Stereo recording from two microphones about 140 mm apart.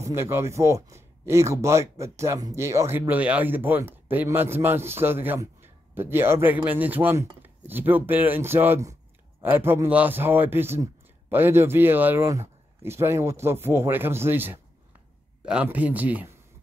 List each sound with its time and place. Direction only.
0.0 s speech: 20° right (ahead or behind)